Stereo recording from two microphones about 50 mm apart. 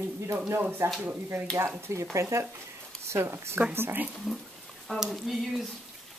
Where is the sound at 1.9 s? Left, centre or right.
Right.